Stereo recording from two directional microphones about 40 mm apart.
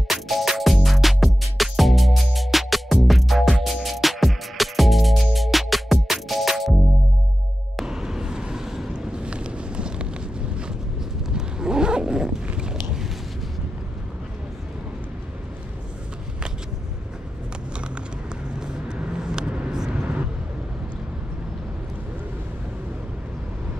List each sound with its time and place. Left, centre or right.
0.1 s music: centre
7.8 s vehicle: centre
8.9 s vehicle: right
11.3 s zipper: centre
12.5 s vehicle: centre
18.9 s vehicle: centre